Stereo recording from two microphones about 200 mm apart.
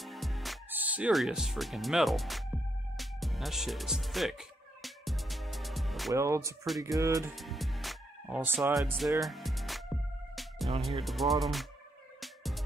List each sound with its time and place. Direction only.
0.0 s music: centre (ahead or behind)
6.1 s speech: 15° right (ahead or behind)
7.3 s speech: centre (ahead or behind)
9.2 s music: centre (ahead or behind)